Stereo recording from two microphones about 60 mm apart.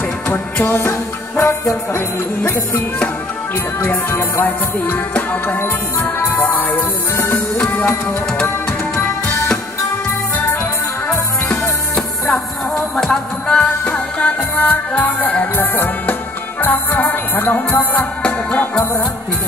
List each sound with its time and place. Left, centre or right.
0.7 s music: left
3.8 s music: left
5.6 s music: left
7.7 s music: left
11.1 s music: centre
12.9 s music: centre
13.7 s music: left
18.2 s music: left